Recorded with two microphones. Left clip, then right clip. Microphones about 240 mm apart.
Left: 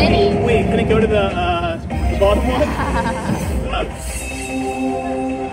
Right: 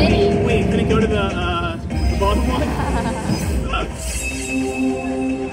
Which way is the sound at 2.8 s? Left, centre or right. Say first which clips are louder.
Left 3 dB; left.